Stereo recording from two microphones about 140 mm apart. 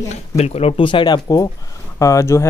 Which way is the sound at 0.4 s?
45° left (ahead or behind).